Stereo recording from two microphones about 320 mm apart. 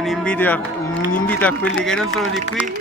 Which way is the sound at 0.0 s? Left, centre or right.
Centre.